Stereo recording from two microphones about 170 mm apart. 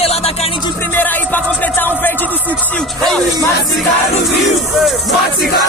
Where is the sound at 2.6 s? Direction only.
5° left (ahead or behind).